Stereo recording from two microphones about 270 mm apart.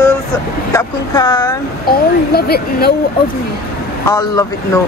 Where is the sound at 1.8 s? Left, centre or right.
Left.